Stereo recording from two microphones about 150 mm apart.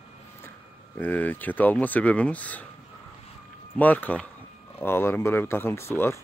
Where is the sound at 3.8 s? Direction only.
10° left (ahead or behind).